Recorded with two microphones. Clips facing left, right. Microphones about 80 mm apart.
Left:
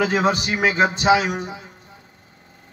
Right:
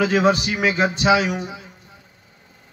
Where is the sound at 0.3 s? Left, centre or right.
Left.